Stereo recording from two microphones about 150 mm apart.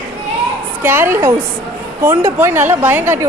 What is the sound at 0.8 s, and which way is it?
A woman's voice, 15° right (ahead or behind).